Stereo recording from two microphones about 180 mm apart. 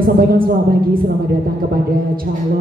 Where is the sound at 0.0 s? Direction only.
55° right (ahead or behind).